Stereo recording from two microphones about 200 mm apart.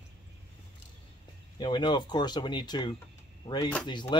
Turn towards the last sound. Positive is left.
turn(degrees=20)  # may be behind; listen again after turning